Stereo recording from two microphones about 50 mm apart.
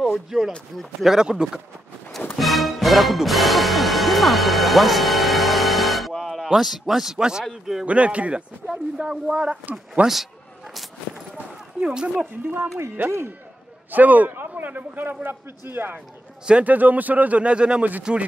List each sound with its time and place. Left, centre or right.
0.0 s speech: centre
2.3 s music: centre
7.8 s speech: right
8.6 s speech: centre
10.0 s speech: right
10.7 s a sound: centre
11.9 s speech: centre
12.4 s speech: right
13.9 s speech: right
16.6 s speech: right; by 18.2 s centre